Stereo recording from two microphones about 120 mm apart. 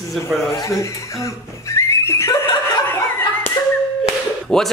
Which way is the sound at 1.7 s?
20° left (ahead or behind).